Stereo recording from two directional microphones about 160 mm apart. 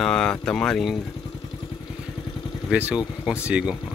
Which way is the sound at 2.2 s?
30° left (ahead or behind).